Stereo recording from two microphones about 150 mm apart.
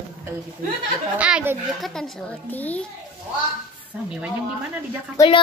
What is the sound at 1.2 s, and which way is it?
Speech, 5° right (ahead or behind).